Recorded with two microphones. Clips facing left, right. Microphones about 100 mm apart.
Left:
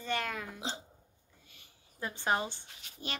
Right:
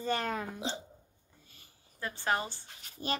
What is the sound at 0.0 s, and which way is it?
Hiccup, 35° right (ahead or behind).